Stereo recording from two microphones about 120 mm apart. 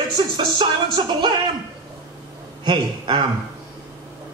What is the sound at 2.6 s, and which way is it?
Speech, 40° right (ahead or behind).